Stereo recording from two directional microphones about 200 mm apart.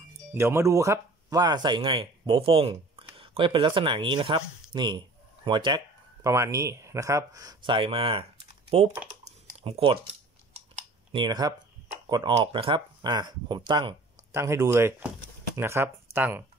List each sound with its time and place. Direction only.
0.3 s speech: 10° right (ahead or behind); by 8.9 s 30° right (ahead or behind)
9.2 s typing: 30° right (ahead or behind)
10.5 s computer keyboard: 30° right (ahead or behind)
12.1 s speech: 25° right (ahead or behind)